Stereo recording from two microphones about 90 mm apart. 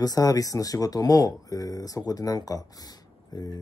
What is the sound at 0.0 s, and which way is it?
Speech, 45° left (ahead or behind).